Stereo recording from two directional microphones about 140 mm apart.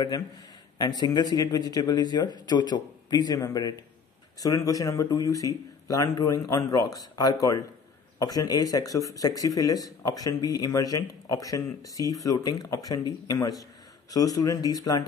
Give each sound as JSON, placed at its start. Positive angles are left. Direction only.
{"t": 0.7, "sound": "speech", "side_deg": 30}